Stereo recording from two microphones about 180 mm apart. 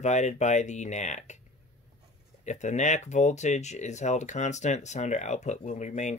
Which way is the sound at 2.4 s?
40° left (ahead or behind).